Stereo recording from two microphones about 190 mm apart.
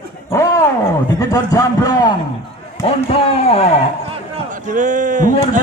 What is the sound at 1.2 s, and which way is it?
A man's voice, 20° left (ahead or behind).